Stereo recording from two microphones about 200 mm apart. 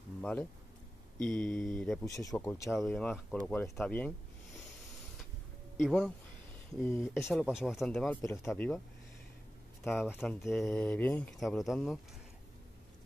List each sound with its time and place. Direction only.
0.2 s speech: 5° left (ahead or behind)
2.0 s speech: 15° left (ahead or behind)
2.7 s speech: centre (ahead or behind)
5.8 s speech: centre (ahead or behind)
7.4 s speech: 5° right (ahead or behind)
8.2 s speech: 15° left (ahead or behind)
10.0 s speech: 10° left (ahead or behind)